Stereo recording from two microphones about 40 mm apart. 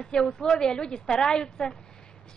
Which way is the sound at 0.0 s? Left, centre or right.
Centre.